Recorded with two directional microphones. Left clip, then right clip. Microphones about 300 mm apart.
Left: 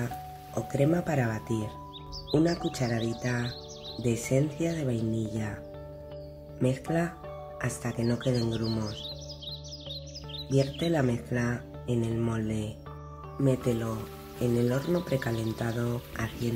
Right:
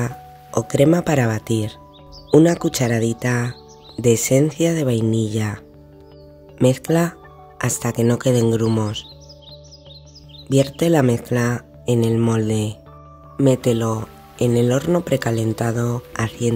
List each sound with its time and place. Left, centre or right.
0.0 s speech: right
6.6 s speech: right
10.5 s speech: right